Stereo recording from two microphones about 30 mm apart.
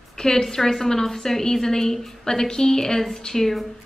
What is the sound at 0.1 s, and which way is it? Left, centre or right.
A woman's voice, centre.